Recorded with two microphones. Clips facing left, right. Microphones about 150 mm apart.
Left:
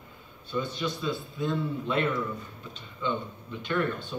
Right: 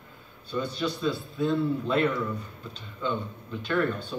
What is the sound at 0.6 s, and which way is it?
Speech, 35° right (ahead or behind).